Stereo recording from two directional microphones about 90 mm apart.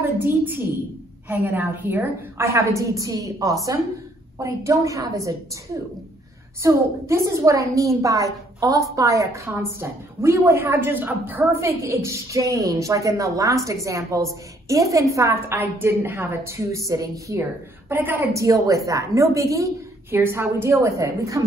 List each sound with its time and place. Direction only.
0.0 s a woman's voice: 25° right (ahead or behind)
6.6 s a woman's voice: 35° right (ahead or behind)
11.6 s a woman's voice: 35° right (ahead or behind)
15.5 s a woman's voice: 25° right (ahead or behind)
17.4 s a woman's voice: 20° right (ahead or behind)
18.3 s a woman's voice: 35° right (ahead or behind)
20.2 s a woman's voice: 25° right (ahead or behind)